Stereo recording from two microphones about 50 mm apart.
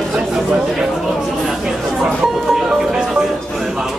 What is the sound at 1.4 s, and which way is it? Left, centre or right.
Music, centre.